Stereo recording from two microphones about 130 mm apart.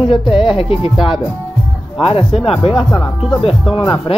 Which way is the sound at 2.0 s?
50° left (ahead or behind).